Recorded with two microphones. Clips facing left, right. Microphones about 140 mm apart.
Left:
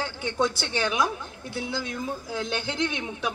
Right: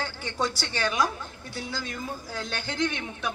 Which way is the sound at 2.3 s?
20° left (ahead or behind).